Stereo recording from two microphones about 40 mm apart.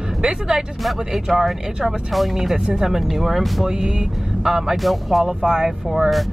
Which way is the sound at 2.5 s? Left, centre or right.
Centre.